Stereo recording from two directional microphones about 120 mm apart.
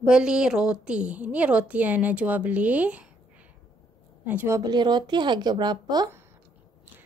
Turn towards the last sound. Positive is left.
turn(degrees=-35)  # may be behind; listen again after turning